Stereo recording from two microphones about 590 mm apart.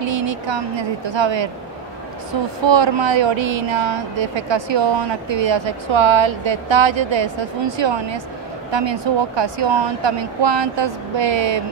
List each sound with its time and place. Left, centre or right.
0.0 s speech: right
2.6 s speech: right